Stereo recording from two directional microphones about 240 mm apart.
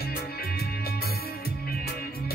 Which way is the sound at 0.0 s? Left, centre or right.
Left.